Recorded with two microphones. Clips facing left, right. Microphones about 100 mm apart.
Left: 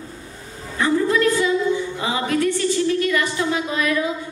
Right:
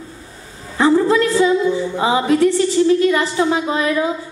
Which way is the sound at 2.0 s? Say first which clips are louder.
Right 7 dB; 25° right (ahead or behind).